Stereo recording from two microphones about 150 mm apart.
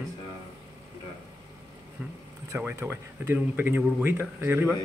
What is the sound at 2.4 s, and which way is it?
Speech, 15° right (ahead or behind).